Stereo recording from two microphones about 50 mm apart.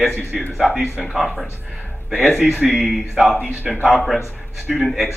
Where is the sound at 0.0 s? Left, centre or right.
Centre.